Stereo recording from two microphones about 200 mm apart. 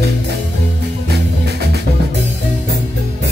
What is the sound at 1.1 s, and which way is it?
Music, 55° right (ahead or behind).